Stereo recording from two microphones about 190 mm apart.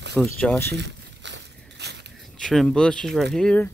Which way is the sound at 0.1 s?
5° left (ahead or behind).